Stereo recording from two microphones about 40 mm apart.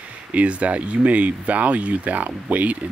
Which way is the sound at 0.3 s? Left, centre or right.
Right.